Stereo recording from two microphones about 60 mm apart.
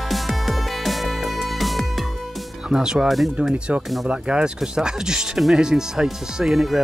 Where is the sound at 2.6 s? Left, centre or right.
Centre.